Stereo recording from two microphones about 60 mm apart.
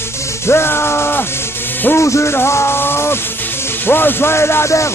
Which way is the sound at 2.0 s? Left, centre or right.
Left.